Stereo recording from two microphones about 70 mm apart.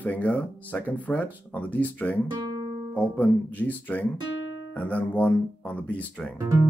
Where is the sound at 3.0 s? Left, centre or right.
Left.